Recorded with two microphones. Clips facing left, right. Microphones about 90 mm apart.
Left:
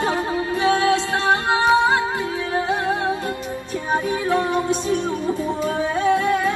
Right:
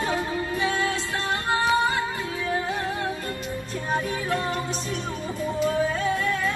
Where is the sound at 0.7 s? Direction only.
75° left (ahead or behind).